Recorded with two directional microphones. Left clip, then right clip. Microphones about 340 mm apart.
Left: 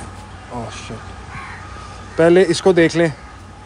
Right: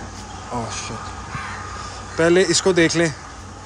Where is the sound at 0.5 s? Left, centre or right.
Centre.